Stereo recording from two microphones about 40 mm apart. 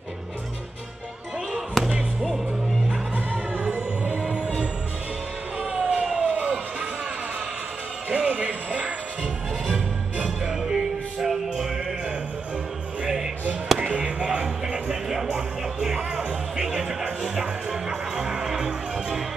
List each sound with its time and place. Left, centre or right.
1.5 s music: centre
3.7 s music: right
5.6 s a sound: centre
6.3 s music: right
8.1 s music: right
9.2 s music: centre
10.2 s music: centre
13.7 s music: right